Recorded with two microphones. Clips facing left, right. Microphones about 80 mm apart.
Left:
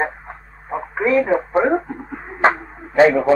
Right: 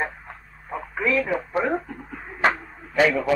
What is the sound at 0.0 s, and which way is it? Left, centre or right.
Radio, left.